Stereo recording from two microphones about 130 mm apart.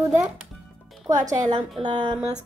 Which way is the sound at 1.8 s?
40° right (ahead or behind).